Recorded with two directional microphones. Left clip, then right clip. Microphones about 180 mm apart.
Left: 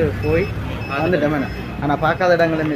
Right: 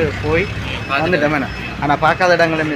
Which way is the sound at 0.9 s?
5° left (ahead or behind).